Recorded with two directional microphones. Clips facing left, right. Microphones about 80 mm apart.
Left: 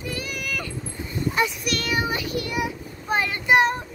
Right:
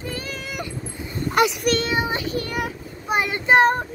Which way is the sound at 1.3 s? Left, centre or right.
Right.